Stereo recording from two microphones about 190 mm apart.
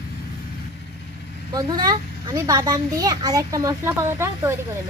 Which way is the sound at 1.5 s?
20° right (ahead or behind).